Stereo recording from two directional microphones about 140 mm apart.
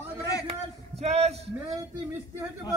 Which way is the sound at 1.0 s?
50° right (ahead or behind).